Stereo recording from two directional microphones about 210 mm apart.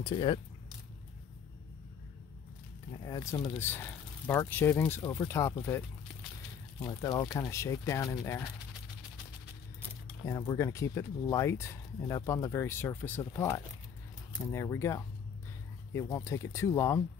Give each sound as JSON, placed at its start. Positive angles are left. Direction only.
{"t": 0.0, "sound": "speech", "side_deg": 25}
{"t": 3.0, "sound": "speech", "side_deg": 20}
{"t": 6.9, "sound": "speech", "side_deg": 15}
{"t": 9.8, "sound": "speech", "side_deg": 15}